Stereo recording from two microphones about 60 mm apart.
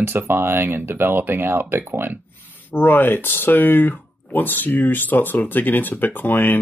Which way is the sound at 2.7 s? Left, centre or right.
Left.